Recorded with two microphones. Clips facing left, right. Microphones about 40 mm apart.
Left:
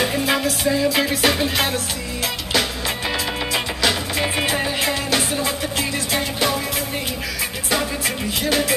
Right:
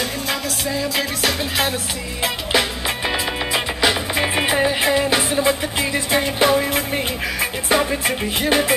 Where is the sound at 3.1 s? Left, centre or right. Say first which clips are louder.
Right 1 dB; centre.